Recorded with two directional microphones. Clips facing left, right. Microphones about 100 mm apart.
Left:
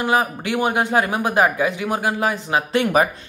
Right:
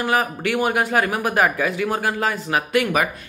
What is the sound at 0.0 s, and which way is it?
Speech, 20° left (ahead or behind).